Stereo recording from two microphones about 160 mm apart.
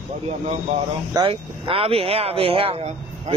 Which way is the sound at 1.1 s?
35° right (ahead or behind).